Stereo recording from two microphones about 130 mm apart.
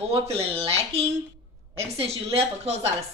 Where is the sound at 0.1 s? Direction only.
50° right (ahead or behind).